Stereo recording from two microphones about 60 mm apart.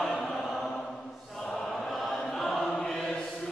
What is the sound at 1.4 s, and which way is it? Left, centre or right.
Choir, centre.